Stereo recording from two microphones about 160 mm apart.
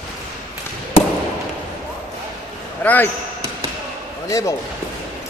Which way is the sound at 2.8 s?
10° left (ahead or behind).